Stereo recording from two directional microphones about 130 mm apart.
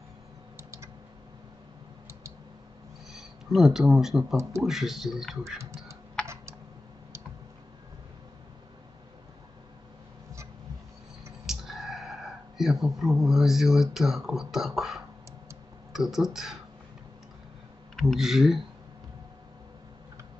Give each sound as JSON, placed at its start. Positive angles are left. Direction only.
{"t": 0.6, "sound": "typing", "side_deg": -20}
{"t": 3.1, "sound": "speech", "side_deg": -5}
{"t": 4.4, "sound": "speech", "side_deg": -20}
{"t": 4.6, "sound": "speech", "side_deg": 0}
{"t": 6.2, "sound": "typing", "side_deg": -20}
{"t": 11.4, "sound": "speech", "side_deg": -5}
{"t": 17.9, "sound": "speech", "side_deg": 0}